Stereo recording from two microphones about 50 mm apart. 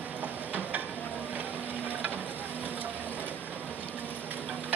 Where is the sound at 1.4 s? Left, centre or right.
Right.